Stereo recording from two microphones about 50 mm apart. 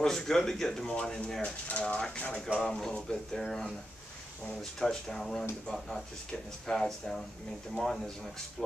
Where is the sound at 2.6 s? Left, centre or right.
Centre.